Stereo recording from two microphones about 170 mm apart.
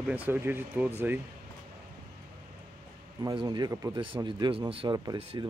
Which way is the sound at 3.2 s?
20° right (ahead or behind).